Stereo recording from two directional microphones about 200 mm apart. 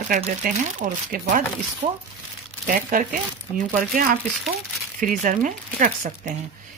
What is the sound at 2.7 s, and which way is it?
Speech, 40° right (ahead or behind).